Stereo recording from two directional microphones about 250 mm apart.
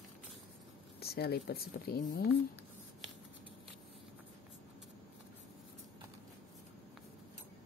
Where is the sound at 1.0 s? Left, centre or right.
Left.